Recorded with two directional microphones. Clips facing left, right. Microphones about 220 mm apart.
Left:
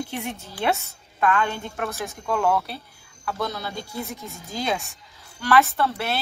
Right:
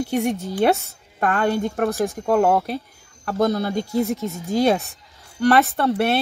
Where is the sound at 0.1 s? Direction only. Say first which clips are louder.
Right 10 dB; 45° right (ahead or behind).